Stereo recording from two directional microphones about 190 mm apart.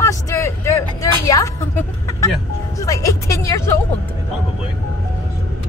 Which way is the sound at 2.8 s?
15° left (ahead or behind).